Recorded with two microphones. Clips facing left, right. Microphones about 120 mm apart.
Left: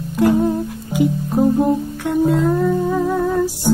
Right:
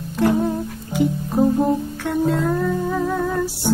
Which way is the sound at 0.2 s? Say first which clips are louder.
Left 3 dB; 5° left (ahead or behind).